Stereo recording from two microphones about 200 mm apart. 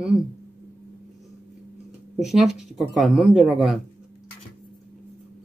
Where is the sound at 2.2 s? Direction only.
Centre (ahead or behind).